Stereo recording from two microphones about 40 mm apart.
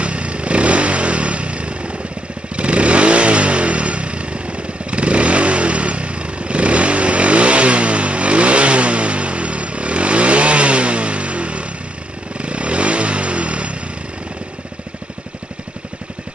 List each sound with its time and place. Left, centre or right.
0.0 s motorcycle: right
2.5 s vehicle: right
12.4 s motorcycle: right